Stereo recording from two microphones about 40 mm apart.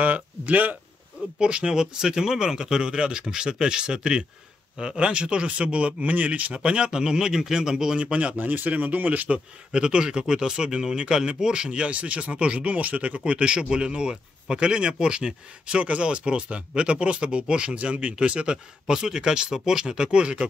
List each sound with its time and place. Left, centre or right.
0.0 s speech: right
1.4 s speech: right
6.5 s speech: right
8.0 s speech: right
8.4 s speech: right
9.7 s speech: centre; by 13.2 s right
13.2 s speech: right
20.1 s speech: right